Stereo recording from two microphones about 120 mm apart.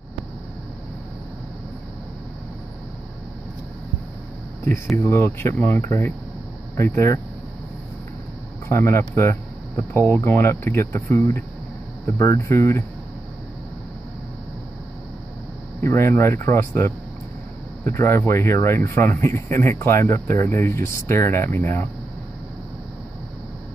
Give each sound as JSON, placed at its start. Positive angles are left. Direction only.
{"t": 4.6, "sound": "speech", "side_deg": 20}
{"t": 8.6, "sound": "speech", "side_deg": 20}
{"t": 15.8, "sound": "speech", "side_deg": 25}
{"t": 17.9, "sound": "speech", "side_deg": 20}